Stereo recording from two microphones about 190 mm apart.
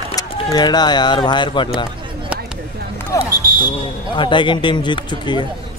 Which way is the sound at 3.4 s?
50° right (ahead or behind).